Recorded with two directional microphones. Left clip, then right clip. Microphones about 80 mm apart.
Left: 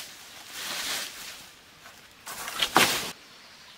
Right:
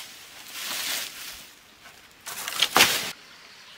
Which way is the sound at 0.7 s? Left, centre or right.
Right.